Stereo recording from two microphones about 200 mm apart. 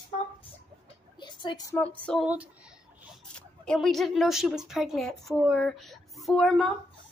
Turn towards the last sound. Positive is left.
turn(degrees=0)  # may be behind; listen again after turning